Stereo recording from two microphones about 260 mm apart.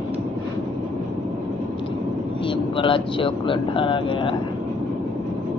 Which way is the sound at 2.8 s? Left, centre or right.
Centre.